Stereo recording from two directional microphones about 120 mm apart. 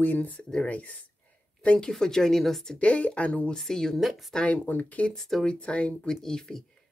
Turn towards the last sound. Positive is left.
turn(degrees=5)  # may be behind; listen again after turning